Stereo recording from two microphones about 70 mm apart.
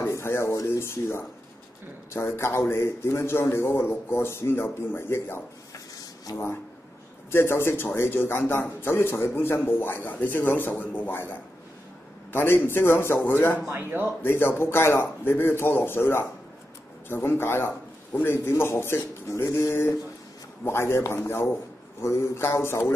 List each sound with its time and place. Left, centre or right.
0.0 s a man's voice: left
13.7 s speech: right
14.2 s a man's voice: left